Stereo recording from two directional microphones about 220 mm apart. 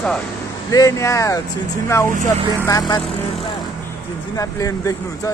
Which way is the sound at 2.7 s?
15° left (ahead or behind).